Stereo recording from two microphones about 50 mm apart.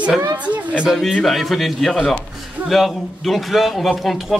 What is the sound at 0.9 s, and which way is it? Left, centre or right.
A man's voice, centre.